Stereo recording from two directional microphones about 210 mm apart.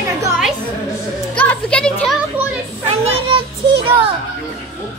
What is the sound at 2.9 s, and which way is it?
Speech, 25° right (ahead or behind).